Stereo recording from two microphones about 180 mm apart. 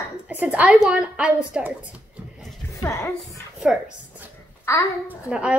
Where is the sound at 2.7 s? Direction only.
15° left (ahead or behind).